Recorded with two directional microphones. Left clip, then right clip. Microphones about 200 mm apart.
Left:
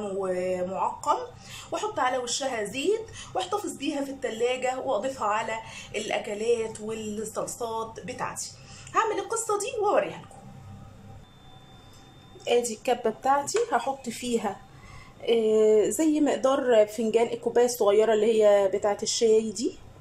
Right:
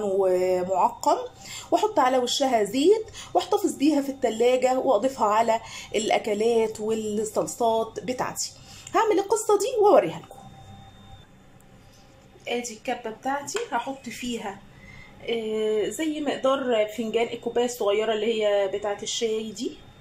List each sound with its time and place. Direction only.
0.2 s speech: 25° right (ahead or behind)
12.4 s a woman's voice: 5° left (ahead or behind)